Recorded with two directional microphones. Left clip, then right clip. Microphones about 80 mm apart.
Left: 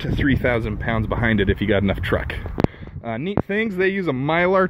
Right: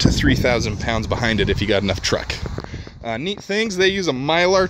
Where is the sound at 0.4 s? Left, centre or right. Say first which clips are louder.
Right 2 dB; right.